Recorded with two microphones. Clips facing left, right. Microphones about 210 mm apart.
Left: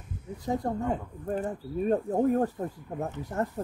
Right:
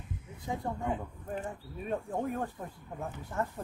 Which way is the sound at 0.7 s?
40° left (ahead or behind).